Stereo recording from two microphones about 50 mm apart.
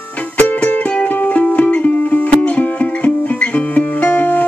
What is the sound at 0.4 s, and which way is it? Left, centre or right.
Music, left.